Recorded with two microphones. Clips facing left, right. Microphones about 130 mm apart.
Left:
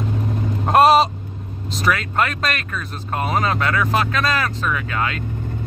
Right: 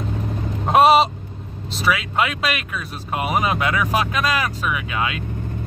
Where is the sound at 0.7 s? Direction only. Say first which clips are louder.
Even; centre (ahead or behind).